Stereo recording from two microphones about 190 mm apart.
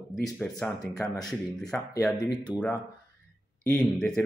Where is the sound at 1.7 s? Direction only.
10° left (ahead or behind).